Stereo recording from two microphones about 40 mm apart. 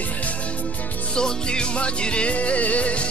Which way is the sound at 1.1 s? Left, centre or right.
Left.